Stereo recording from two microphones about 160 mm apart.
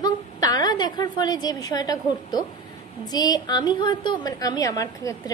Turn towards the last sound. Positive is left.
turn(degrees=20)  # may be behind; listen again after turning